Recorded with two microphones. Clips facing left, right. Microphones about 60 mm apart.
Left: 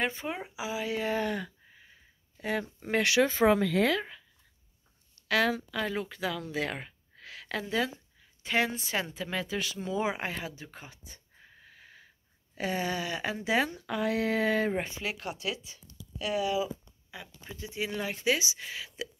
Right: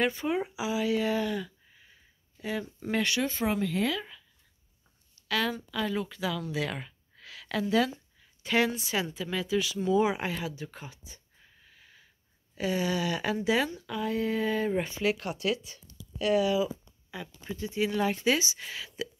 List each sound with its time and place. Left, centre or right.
0.0 s speech: centre; by 1.5 s left
3.0 s speech: left
5.3 s speech: left
5.7 s speech: left
9.8 s speech: left
11.6 s wheeze: left
12.5 s speech: left
13.7 s speech: left
14.7 s speech: left
15.0 s speech: centre
16.6 s speech: centre